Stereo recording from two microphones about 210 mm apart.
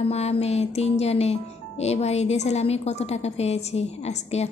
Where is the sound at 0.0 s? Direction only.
30° left (ahead or behind).